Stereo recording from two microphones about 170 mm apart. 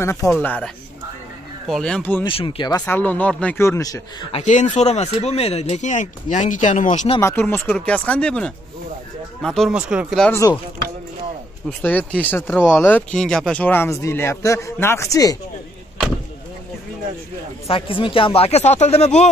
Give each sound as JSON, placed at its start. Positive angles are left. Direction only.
{"t": 0.0, "sound": "speech", "side_deg": 15}
{"t": 1.7, "sound": "speech", "side_deg": 5}
{"t": 2.2, "sound": "speech", "side_deg": 30}
{"t": 2.8, "sound": "speech", "side_deg": 10}
{"t": 4.3, "sound": "speech", "side_deg": 45}
{"t": 7.2, "sound": "speech", "side_deg": 15}
{"t": 11.8, "sound": "speech", "side_deg": 10}
{"t": 17.6, "sound": "speech", "side_deg": 30}